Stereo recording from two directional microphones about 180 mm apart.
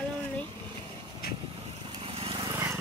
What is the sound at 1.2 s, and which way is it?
Vehicle, 60° left (ahead or behind).